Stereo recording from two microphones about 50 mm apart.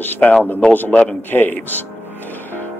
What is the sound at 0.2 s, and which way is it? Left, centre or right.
Speech, left.